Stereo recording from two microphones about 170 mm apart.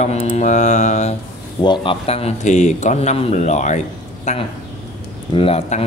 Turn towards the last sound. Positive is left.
turn(degrees=35)  # may be behind; listen again after turning